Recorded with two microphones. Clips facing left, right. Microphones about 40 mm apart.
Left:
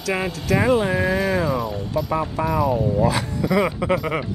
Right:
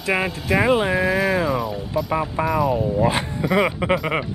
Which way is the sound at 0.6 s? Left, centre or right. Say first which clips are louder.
Right 1 dB; centre.